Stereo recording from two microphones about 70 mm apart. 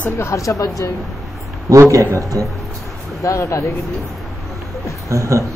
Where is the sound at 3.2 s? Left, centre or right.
Left.